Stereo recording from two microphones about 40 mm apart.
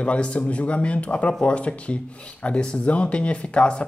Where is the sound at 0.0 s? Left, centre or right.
Left.